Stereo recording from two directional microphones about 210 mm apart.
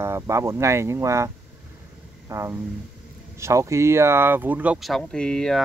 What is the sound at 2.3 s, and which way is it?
Speech, 15° right (ahead or behind).